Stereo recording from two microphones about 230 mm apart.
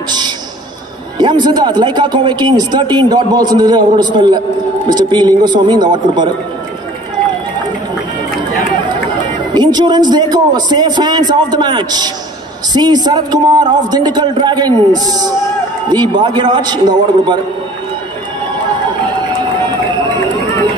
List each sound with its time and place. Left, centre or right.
1.1 s speech: centre
9.5 s a man's voice: centre